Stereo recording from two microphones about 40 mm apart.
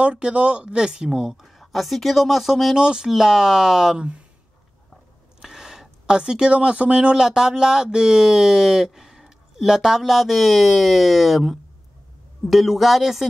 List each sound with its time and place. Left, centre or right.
0.0 s speech: right; by 1.4 s centre
1.4 s speech: centre
2.8 s speech: right
3.1 s speech: centre
5.4 s speech: centre
10.1 s speech: centre